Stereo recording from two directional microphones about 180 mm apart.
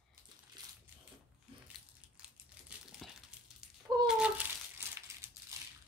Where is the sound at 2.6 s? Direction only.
Centre (ahead or behind).